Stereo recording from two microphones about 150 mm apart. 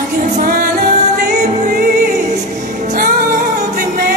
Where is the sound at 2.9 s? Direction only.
65° right (ahead or behind).